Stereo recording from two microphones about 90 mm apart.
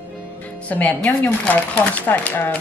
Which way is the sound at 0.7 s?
15° left (ahead or behind).